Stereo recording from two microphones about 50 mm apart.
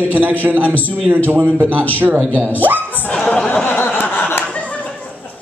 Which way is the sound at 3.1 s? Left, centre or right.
Centre.